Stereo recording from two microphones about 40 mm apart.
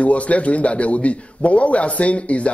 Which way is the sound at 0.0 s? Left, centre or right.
Left.